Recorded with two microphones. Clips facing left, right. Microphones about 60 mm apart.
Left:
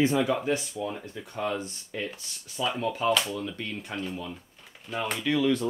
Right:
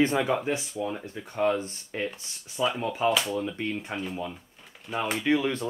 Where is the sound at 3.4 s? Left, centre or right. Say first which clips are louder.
Right 4 dB; right.